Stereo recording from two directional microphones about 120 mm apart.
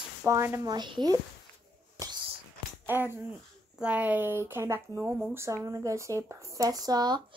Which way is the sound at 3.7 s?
10° right (ahead or behind).